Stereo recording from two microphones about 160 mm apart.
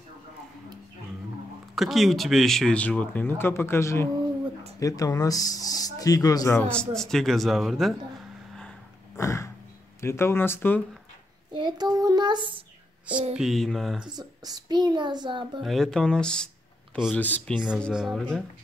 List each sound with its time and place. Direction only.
1.8 s speech: centre (ahead or behind); by 6.6 s 20° left (ahead or behind)
6.6 s speech: 5° left (ahead or behind)
9.1 s a sound: 20° left (ahead or behind)
9.9 s speech: 15° left (ahead or behind)
11.5 s child singing: 25° right (ahead or behind)
13.1 s a sound: 40° right (ahead or behind)
13.4 s speech: centre (ahead or behind)
14.1 s a child's voice: 25° right (ahead or behind)
15.6 s speech: centre (ahead or behind)